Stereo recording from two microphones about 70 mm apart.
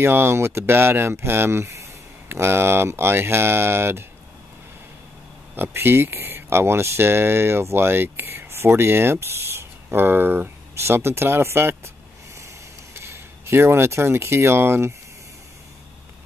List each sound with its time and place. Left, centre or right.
0.0 s speech: right
5.6 s speech: right
13.0 s speech: right